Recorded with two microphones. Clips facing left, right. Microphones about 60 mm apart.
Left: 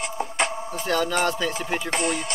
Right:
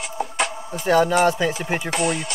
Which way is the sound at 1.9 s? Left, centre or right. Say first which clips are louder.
Right 3 dB; centre.